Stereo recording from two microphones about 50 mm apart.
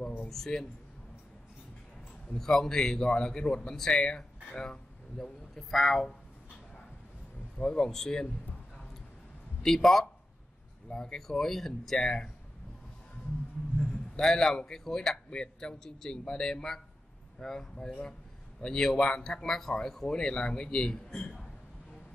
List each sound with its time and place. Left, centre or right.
0.3 s a man's voice: centre
2.3 s a man's voice: centre
5.6 s speech: centre
7.5 s a man's voice: centre
9.6 s a man's voice: centre
14.1 s a man's voice: centre